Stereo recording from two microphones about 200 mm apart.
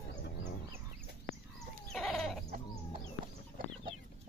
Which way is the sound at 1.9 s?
Centre (ahead or behind).